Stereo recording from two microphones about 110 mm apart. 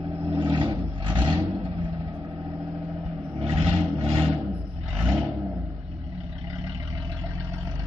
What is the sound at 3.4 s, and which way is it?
Vehicle, 60° right (ahead or behind).